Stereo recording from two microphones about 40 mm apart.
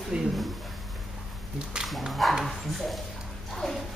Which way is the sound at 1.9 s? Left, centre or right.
Centre.